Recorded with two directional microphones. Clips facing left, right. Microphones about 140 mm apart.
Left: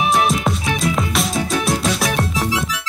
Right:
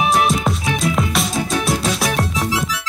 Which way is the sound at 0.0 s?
Centre (ahead or behind).